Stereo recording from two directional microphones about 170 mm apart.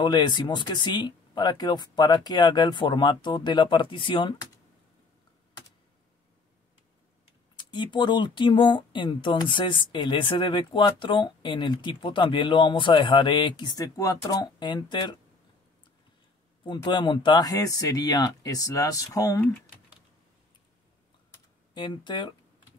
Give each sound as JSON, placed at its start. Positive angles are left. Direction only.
{"t": 0.0, "sound": "speech", "side_deg": 25}
{"t": 7.5, "sound": "speech", "side_deg": 25}
{"t": 16.6, "sound": "speech", "side_deg": 25}
{"t": 21.7, "sound": "speech", "side_deg": 25}